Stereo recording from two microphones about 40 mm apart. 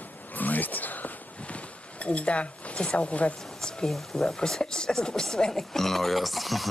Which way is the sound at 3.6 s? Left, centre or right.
Centre.